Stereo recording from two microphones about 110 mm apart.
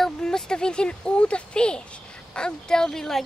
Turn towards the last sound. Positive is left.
turn(degrees=5)  # may be behind; listen again after turning